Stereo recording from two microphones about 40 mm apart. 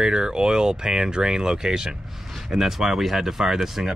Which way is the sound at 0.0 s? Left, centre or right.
Centre.